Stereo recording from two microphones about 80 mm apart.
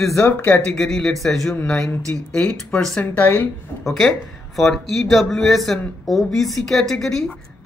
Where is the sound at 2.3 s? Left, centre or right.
Centre.